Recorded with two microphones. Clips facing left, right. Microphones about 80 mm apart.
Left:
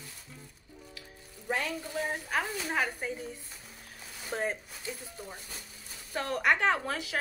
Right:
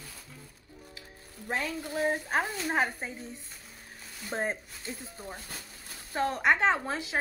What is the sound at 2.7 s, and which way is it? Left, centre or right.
Speech, right.